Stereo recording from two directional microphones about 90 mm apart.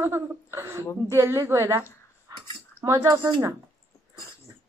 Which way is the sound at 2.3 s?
40° right (ahead or behind).